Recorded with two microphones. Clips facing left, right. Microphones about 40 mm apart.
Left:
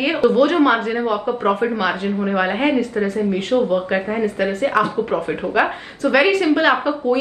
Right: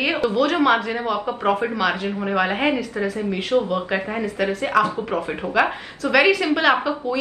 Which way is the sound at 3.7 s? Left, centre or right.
Centre.